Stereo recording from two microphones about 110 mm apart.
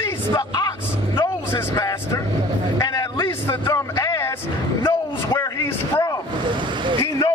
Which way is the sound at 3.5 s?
25° left (ahead or behind).